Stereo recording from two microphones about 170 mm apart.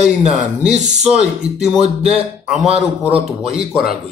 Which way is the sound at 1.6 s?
5° right (ahead or behind).